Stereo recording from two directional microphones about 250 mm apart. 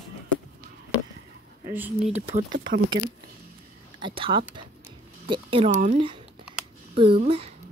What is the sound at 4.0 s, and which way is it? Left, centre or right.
Speech, centre.